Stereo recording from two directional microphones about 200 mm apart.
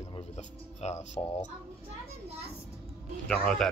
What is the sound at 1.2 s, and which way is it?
Speech, 15° left (ahead or behind).